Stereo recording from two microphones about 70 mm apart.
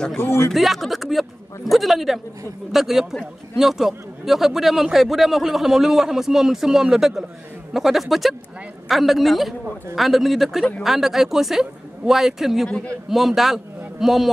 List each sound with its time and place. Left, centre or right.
0.2 s speech: left
0.5 s a man's voice: centre
12.6 s a man's voice: centre
13.1 s a man's voice: centre